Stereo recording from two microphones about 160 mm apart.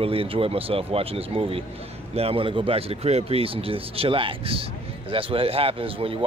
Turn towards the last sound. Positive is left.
turn(degrees=-35)  # may be behind; listen again after turning